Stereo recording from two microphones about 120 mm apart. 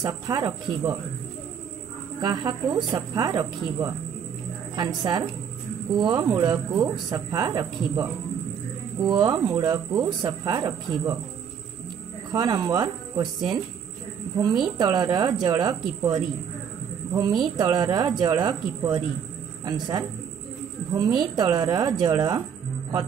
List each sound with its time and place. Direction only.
0.0 s speech: 35° right (ahead or behind)
2.1 s speech: 35° right (ahead or behind)
9.0 s speech: 40° right (ahead or behind)
12.3 s speech: 35° right (ahead or behind)
17.1 s speech: 35° right (ahead or behind)